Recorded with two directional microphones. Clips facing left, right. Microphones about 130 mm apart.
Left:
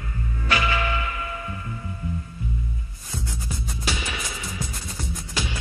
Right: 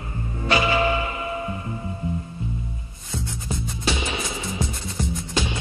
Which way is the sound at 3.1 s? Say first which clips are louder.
Right 3 dB; 25° right (ahead or behind).